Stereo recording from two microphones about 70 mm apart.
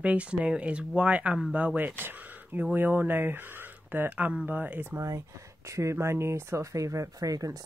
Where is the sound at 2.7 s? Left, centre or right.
Right.